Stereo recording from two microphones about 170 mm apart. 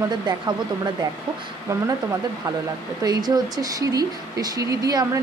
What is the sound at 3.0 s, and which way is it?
Speech, 25° right (ahead or behind).